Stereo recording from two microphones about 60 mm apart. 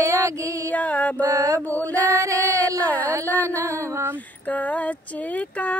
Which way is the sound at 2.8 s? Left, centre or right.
Left.